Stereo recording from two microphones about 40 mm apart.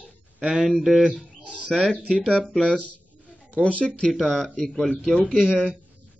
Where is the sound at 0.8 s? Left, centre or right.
Centre.